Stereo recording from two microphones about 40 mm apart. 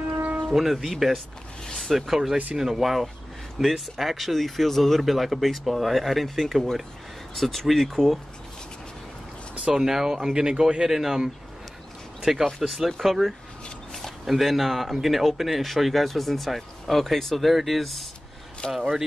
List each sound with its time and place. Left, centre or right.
0.2 s a sound: right
0.5 s speech: centre
1.7 s a sound: centre
2.0 s speech: centre
9.7 s speech: centre
10.9 s speech: centre
12.4 s speech: centre
13.9 s a sound: centre
14.3 s speech: centre